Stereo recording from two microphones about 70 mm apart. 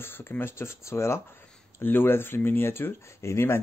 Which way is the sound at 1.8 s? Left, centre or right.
Left.